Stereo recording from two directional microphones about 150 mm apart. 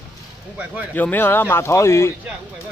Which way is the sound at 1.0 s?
10° left (ahead or behind).